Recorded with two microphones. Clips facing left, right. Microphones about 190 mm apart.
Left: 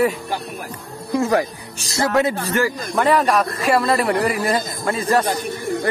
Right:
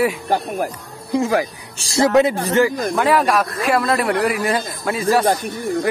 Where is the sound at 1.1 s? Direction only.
15° right (ahead or behind).